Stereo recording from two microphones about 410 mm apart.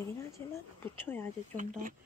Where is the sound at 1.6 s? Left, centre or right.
Centre.